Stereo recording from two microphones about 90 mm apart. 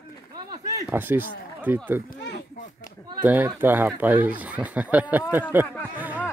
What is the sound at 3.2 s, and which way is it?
Speech, 20° right (ahead or behind).